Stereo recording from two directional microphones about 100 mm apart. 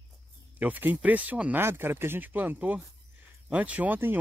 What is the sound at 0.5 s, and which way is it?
Speech, 15° right (ahead or behind).